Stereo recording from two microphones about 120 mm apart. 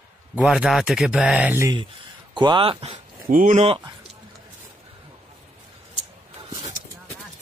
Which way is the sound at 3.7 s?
40° right (ahead or behind).